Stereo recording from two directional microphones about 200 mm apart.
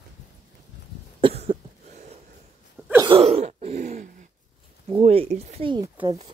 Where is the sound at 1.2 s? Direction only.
30° right (ahead or behind).